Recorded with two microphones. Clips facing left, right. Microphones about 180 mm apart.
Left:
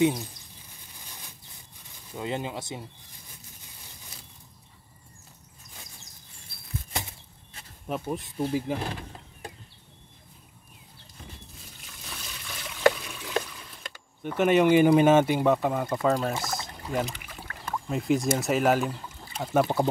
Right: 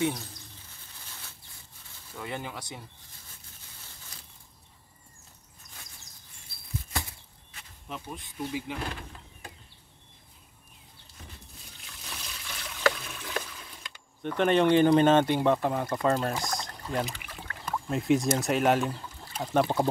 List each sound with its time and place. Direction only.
0.0 s speech: 15° left (ahead or behind)
0.7 s bird flight: 15° left (ahead or behind)
2.1 s speech: 20° left (ahead or behind)
6.5 s a sound: 60° left (ahead or behind)
6.9 s bird flight: 20° left (ahead or behind)
7.9 s speech: 45° left (ahead or behind)
11.8 s trickle: centre (ahead or behind)
12.9 s a sound: centre (ahead or behind)
14.2 s speech: 5° left (ahead or behind)